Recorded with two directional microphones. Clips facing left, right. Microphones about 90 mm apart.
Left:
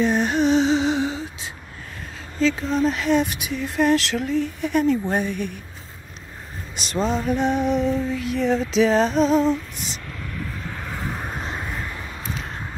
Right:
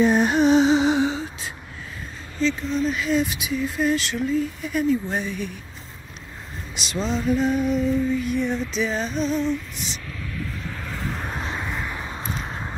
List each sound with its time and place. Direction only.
0.0 s music: 15° right (ahead or behind)
2.7 s speech: 65° left (ahead or behind)
6.7 s music: 45° left (ahead or behind); by 9.4 s 90° left
10.7 s vehicle: 20° left (ahead or behind)
11.3 s a sound: 5° left (ahead or behind)
11.9 s a sound: 25° right (ahead or behind)